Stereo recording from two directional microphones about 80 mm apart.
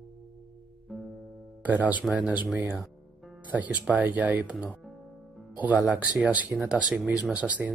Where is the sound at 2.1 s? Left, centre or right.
Centre.